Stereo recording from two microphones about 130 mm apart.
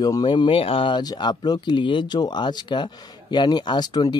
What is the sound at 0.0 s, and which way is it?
Speech, 35° left (ahead or behind).